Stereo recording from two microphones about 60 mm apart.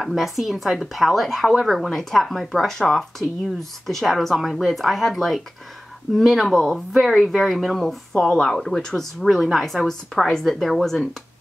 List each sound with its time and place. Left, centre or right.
0.0 s speech: centre